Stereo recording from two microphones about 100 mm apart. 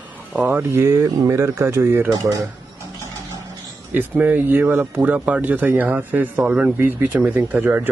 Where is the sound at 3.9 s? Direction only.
20° right (ahead or behind).